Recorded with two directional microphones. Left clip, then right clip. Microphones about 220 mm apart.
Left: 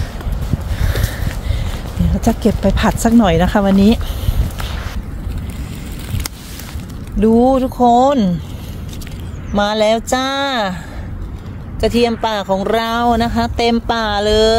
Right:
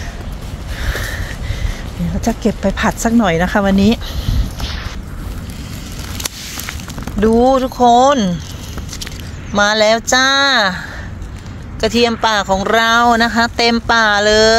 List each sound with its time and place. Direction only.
0.7 s a sound: centre (ahead or behind)
2.2 s speech: 10° left (ahead or behind)
7.2 s speech: centre (ahead or behind)
9.5 s speech: centre (ahead or behind)
11.8 s speech: centre (ahead or behind)